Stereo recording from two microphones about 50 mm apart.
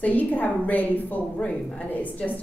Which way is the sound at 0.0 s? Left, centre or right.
Left.